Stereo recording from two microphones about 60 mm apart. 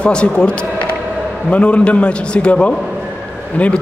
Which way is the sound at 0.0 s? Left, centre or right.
Centre.